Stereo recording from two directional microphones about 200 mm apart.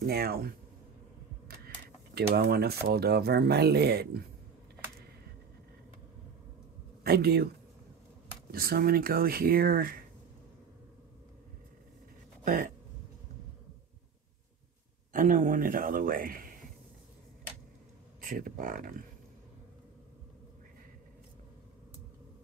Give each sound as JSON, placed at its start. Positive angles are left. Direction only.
{"t": 0.0, "sound": "speech", "side_deg": -50}
{"t": 2.1, "sound": "speech", "side_deg": -50}
{"t": 7.0, "sound": "speech", "side_deg": -50}
{"t": 8.5, "sound": "speech", "side_deg": -50}
{"t": 15.1, "sound": "speech", "side_deg": -40}
{"t": 18.2, "sound": "speech", "side_deg": -45}